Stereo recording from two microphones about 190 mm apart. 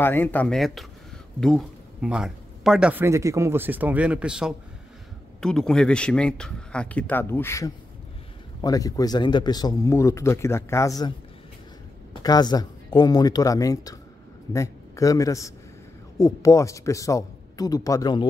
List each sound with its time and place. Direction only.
0.0 s a man's voice: 10° left (ahead or behind)
12.2 s a man's voice: 20° left (ahead or behind)